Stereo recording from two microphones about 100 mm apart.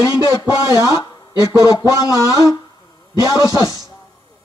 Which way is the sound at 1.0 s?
40° left (ahead or behind).